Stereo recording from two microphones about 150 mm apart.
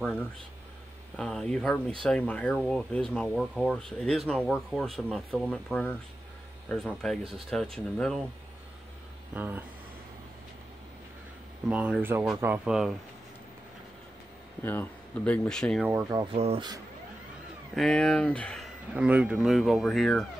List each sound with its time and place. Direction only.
1.1 s speech: 5° left (ahead or behind)
9.3 s speech: 10° right (ahead or behind)
11.6 s speech: 5° right (ahead or behind)
14.6 s speech: 10° left (ahead or behind)
15.8 s speech: 10° right (ahead or behind)
16.3 s speech: 40° right (ahead or behind)
17.7 s speech: 5° left (ahead or behind)
18.9 s speech: 10° right (ahead or behind)